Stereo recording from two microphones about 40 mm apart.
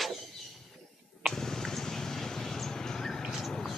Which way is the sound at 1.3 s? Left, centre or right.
Centre.